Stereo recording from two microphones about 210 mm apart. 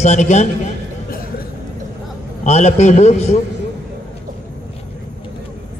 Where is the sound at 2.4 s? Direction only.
35° left (ahead or behind).